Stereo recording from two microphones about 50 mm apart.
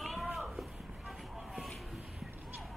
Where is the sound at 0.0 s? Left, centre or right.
Centre.